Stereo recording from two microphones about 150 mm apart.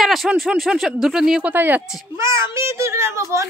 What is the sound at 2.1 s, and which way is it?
A child's voice, 20° right (ahead or behind).